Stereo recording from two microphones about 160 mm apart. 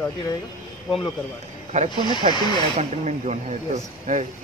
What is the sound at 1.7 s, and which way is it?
Speech, 50° right (ahead or behind).